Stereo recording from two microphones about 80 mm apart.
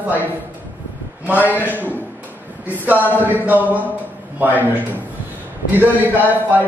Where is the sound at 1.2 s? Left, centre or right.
Right.